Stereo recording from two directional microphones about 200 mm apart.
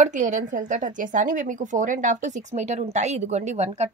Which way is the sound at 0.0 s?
40° right (ahead or behind).